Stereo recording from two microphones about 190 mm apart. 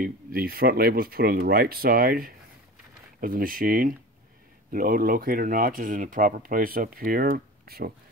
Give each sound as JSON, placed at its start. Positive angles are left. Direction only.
{"t": 0.0, "sound": "speech", "side_deg": -50}